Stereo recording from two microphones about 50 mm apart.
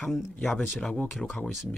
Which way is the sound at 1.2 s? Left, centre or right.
Centre.